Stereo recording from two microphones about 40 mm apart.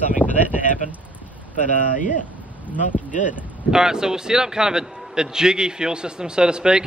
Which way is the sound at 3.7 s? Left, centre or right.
Centre.